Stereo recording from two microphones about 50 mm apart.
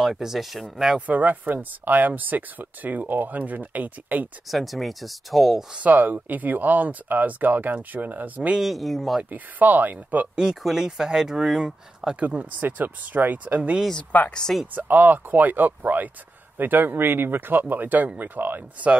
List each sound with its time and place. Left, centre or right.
0.0 s speech: centre
0.9 s speech: right
4.5 s speech: centre
5.8 s speech: right
8.5 s speech: centre
9.3 s speech: right
10.3 s speech: centre; by 13.6 s right
14.1 s speech: left
14.8 s speech: right